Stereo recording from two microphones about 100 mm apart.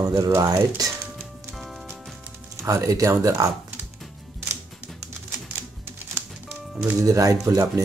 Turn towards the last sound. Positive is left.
turn(degrees=-35)  # may be behind; listen again after turning